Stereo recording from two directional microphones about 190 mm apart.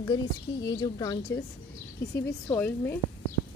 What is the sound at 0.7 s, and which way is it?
Speech, 20° left (ahead or behind).